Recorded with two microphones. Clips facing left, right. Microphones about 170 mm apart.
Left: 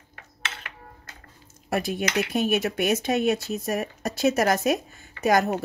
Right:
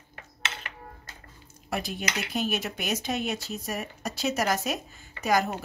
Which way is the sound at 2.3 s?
60° left (ahead or behind).